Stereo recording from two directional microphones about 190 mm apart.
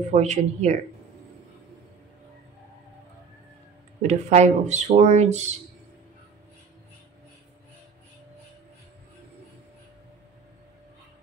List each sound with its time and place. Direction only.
0.1 s speech: 40° right (ahead or behind)
4.1 s speech: 35° right (ahead or behind)